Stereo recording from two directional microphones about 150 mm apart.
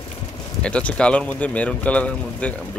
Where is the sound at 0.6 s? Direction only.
10° left (ahead or behind).